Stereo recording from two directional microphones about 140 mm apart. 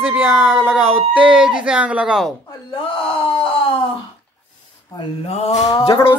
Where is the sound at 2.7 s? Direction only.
40° left (ahead or behind).